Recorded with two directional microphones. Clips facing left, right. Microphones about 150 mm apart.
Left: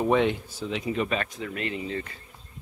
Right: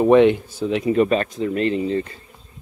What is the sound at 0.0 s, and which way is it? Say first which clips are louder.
Speech: right 10 dB; 70° right (ahead or behind).